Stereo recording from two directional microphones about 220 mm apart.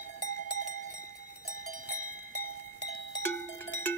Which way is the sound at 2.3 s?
90° left.